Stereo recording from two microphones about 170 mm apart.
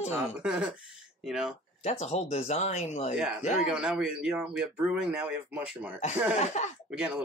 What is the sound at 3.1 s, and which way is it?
Speech, 5° right (ahead or behind).